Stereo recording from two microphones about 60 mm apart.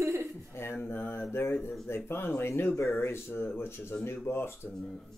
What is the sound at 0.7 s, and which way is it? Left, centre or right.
Mantra, left.